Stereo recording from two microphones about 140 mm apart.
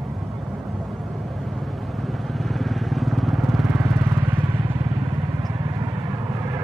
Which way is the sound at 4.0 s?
20° right (ahead or behind).